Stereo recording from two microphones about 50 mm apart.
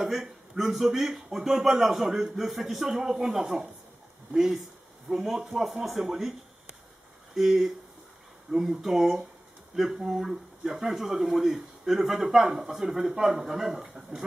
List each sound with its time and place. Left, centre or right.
0.0 s a man's voice: centre
7.3 s a man's voice: centre
13.0 s speech: centre
13.3 s a man's voice: centre